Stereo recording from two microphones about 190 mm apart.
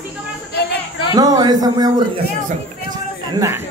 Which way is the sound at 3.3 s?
15° right (ahead or behind).